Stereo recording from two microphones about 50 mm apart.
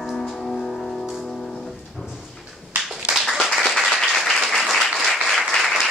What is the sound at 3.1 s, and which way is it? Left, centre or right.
Clapping, centre.